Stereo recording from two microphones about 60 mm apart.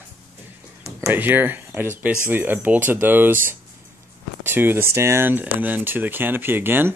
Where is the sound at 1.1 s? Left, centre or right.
Right.